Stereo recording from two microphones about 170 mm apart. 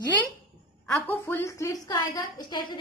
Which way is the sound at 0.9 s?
15° left (ahead or behind).